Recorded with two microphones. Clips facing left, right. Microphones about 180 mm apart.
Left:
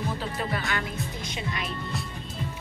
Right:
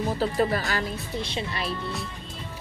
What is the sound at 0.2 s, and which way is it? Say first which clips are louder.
Speech: right 7 dB; 40° right (ahead or behind).